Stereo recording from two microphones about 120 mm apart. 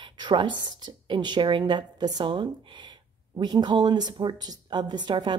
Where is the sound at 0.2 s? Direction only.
40° right (ahead or behind).